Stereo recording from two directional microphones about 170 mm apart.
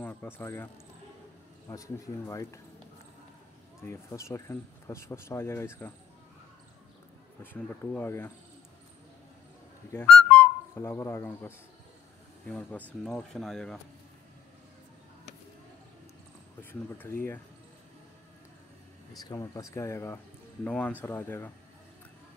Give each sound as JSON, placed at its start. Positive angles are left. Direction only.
{"t": 0.0, "sound": "a sound", "side_deg": 10}
{"t": 1.7, "sound": "speech", "side_deg": 20}
{"t": 3.8, "sound": "speech", "side_deg": 15}
{"t": 7.5, "sound": "speech", "side_deg": 5}
{"t": 9.9, "sound": "speech", "side_deg": 10}
{"t": 17.0, "sound": "speech", "side_deg": 10}
{"t": 19.1, "sound": "speech", "side_deg": 20}